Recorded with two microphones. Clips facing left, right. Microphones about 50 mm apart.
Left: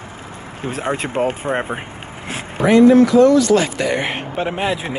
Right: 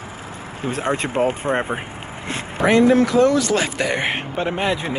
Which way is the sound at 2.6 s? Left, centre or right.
Right.